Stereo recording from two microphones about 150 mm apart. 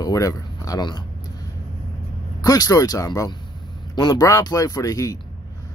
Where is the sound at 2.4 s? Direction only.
25° left (ahead or behind).